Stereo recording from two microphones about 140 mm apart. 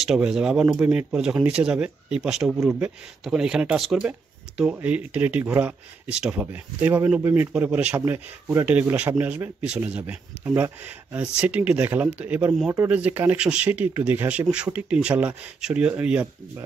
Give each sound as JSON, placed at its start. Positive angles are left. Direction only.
{"t": 0.0, "sound": "speech", "side_deg": -5}